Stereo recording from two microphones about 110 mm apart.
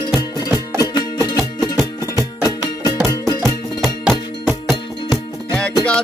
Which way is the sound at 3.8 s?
Centre (ahead or behind).